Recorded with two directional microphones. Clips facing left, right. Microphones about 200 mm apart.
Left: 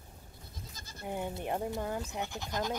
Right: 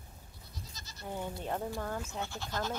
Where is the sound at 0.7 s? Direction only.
50° left (ahead or behind).